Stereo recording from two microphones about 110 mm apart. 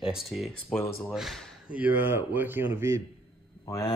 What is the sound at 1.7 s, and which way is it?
Speech, 15° right (ahead or behind).